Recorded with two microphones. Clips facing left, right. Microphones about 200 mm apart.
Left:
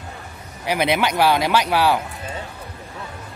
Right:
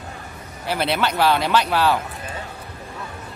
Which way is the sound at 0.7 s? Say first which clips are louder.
Left 2 dB; 15° left (ahead or behind).